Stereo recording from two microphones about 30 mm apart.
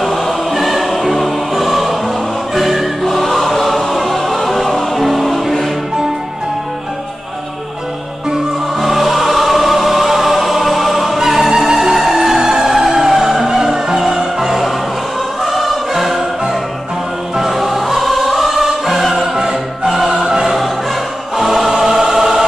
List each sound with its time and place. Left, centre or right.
0.0 s choir: centre
3.1 s choir: centre
8.8 s choir: centre
11.1 s music: centre
15.4 s choir: centre
17.4 s music: centre
19.3 s music: right
20.2 s choir: right
21.4 s choir: centre
21.7 s choir: right